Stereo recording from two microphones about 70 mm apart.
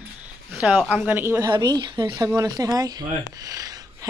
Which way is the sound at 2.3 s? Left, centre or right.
Right.